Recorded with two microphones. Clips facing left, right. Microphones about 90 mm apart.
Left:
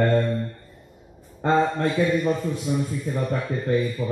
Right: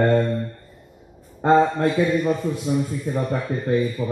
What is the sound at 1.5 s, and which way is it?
A man's voice, 5° right (ahead or behind).